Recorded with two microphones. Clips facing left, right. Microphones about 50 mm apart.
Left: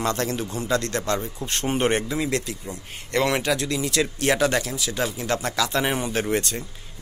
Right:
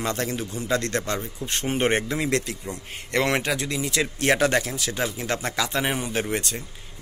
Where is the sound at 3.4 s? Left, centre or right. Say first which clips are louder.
Left 2 dB; right.